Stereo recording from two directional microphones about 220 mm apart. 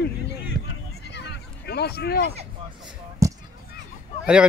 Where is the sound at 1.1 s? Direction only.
50° left (ahead or behind).